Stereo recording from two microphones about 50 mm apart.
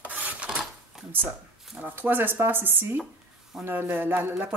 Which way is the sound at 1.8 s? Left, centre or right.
Right.